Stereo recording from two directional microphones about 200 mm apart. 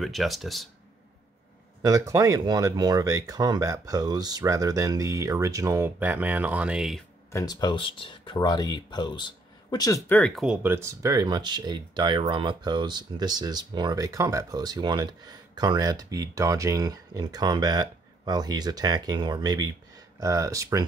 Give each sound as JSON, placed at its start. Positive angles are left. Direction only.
{"t": 0.0, "sound": "speech", "side_deg": 0}
{"t": 1.8, "sound": "speech", "side_deg": -15}
{"t": 7.3, "sound": "speech", "side_deg": 20}